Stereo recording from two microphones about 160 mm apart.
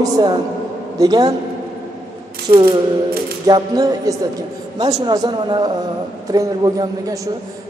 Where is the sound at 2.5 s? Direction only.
35° right (ahead or behind).